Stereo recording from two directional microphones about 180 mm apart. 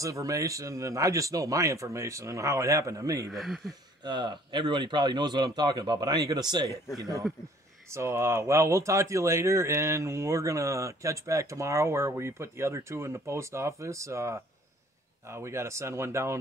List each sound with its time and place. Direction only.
0.0 s speech: 20° right (ahead or behind)
3.3 s speech: centre (ahead or behind)
4.0 s speech: 25° right (ahead or behind)